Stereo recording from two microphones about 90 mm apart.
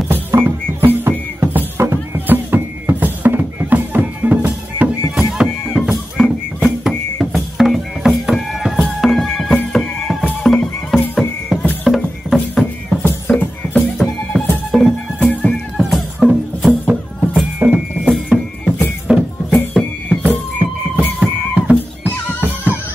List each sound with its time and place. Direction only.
0.1 s music: 25° right (ahead or behind)
5.1 s music: 5° right (ahead or behind)
13.3 s music: 20° left (ahead or behind)
14.0 s music: 5° left (ahead or behind)
15.1 s music: 15° left (ahead or behind)
15.8 s music: 5° right (ahead or behind)
16.6 s music: 20° right (ahead or behind); by 20.2 s 5° right (ahead or behind)
20.2 s music: 15° right (ahead or behind)